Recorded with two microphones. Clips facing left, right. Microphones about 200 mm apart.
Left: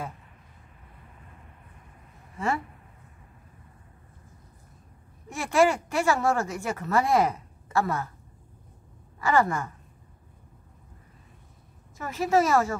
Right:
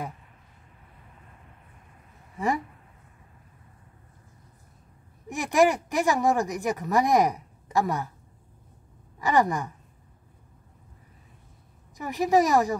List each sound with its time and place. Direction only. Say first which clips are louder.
2.3 s speech: right 2 dB; 15° right (ahead or behind)
5.3 s speech: right 1 dB; 15° right (ahead or behind)
9.2 s speech: right 1 dB; 15° right (ahead or behind)
12.0 s speech: right 2 dB; 15° right (ahead or behind)